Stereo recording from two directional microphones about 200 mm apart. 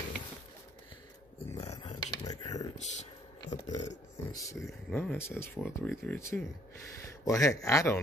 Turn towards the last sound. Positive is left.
turn(degrees=15)  # may be behind; listen again after turning